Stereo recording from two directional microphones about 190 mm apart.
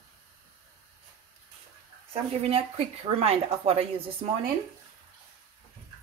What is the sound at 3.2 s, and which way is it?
Speech, 30° right (ahead or behind).